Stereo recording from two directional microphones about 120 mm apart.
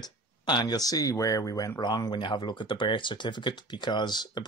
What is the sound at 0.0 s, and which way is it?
Speech, 35° left (ahead or behind).